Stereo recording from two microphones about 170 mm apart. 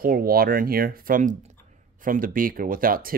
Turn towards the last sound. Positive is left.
turn(degrees=-55)  # may be behind; listen again after turning